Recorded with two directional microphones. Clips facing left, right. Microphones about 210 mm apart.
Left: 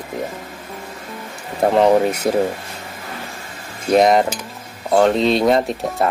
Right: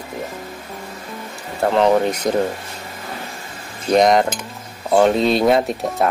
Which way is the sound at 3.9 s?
5° left (ahead or behind).